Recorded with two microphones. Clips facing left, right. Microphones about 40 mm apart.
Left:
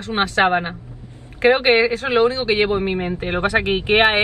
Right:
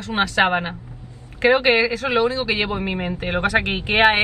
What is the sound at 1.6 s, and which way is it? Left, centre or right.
Speech, left.